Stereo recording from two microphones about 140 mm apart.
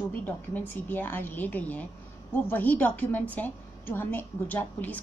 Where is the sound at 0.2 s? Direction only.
15° left (ahead or behind).